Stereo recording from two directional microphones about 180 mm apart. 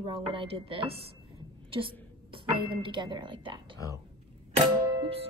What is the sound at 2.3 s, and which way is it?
A woman's voice, 30° right (ahead or behind).